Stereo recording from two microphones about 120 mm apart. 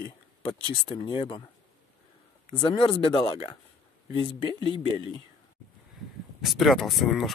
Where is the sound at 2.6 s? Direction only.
45° left (ahead or behind).